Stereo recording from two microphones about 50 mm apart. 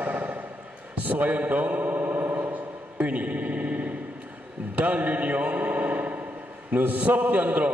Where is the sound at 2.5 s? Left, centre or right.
Right.